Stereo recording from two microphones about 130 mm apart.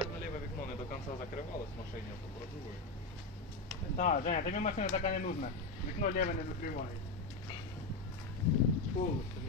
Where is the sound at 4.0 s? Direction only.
90° left.